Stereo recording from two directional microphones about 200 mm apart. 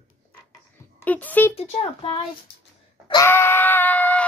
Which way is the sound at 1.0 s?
10° left (ahead or behind).